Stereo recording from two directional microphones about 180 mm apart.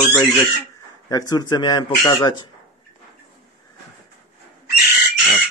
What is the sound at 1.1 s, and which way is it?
Speech, 20° left (ahead or behind).